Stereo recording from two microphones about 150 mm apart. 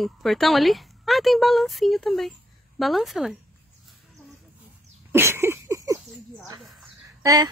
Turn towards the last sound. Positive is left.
turn(degrees=-25)  # may be behind; listen again after turning